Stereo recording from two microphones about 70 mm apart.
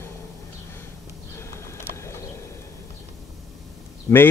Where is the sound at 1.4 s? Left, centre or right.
Left.